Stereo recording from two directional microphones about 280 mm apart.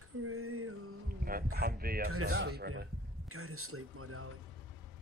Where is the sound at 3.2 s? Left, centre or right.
Right.